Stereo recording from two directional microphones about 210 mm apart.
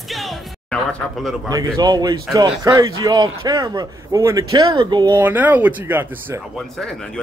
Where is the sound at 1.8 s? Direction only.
20° right (ahead or behind).